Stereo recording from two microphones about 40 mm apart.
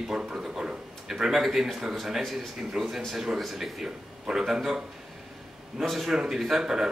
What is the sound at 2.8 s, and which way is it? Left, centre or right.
A man's voice, centre.